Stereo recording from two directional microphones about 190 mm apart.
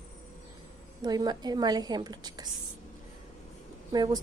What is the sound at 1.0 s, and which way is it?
A woman's voice, 20° right (ahead or behind).